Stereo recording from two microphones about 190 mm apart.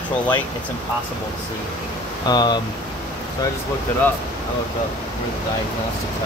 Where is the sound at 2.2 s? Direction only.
20° left (ahead or behind).